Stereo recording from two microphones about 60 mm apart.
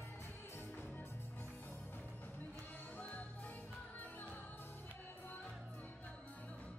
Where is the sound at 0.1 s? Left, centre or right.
Left.